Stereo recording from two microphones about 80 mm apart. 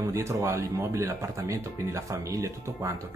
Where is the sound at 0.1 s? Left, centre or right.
Right.